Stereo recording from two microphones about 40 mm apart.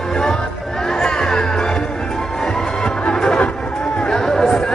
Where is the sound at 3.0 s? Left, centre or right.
Left.